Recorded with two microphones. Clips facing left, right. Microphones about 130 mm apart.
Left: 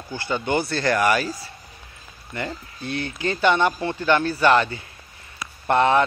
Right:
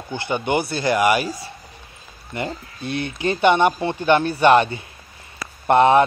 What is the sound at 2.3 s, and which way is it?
Speech, 20° right (ahead or behind).